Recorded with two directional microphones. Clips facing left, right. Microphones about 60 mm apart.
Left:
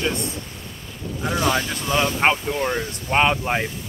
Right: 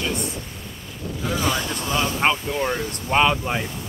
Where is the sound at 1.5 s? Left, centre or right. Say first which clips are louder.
Left 2 dB; left.